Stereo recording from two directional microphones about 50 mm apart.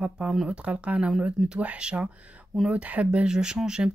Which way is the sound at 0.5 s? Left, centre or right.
Right.